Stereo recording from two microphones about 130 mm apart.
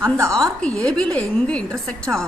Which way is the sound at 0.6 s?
5° left (ahead or behind).